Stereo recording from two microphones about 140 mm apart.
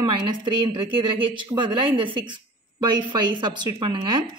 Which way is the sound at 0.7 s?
40° right (ahead or behind).